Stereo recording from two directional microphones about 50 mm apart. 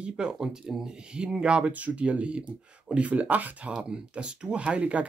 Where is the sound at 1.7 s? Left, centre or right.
Right.